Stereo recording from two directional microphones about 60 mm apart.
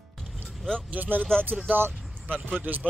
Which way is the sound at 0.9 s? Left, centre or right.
Right.